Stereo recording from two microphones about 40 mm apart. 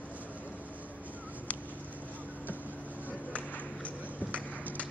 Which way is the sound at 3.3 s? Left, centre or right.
Left.